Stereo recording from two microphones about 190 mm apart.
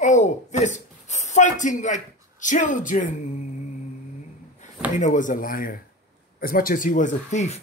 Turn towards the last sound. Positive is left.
turn(degrees=40)  # may be behind; listen again after turning